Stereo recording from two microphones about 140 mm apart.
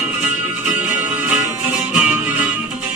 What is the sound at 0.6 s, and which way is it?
Music, 10° right (ahead or behind).